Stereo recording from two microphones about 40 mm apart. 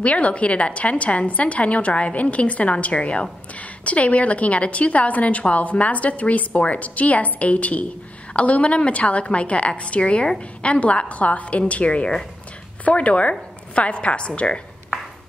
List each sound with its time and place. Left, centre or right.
0.0 s a woman's voice: left